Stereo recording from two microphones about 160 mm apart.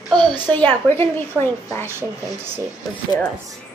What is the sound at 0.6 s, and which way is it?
A woman's voice, 10° left (ahead or behind).